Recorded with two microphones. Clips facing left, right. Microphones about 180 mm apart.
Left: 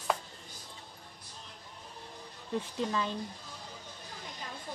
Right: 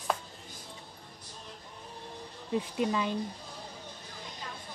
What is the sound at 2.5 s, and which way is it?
Speech, 15° right (ahead or behind).